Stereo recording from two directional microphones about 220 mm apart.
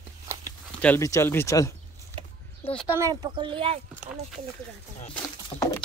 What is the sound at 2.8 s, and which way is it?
Speech, 15° right (ahead or behind).